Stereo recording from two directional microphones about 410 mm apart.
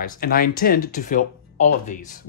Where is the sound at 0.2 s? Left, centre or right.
Left.